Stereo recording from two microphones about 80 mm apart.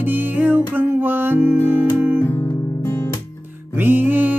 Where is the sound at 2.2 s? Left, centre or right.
Left.